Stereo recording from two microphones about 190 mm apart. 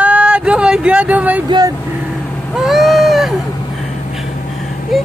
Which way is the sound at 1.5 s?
20° right (ahead or behind).